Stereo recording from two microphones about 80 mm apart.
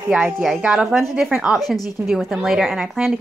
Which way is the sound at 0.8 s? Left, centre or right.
Centre.